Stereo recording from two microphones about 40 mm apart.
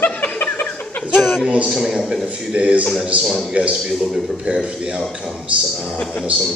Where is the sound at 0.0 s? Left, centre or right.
Left.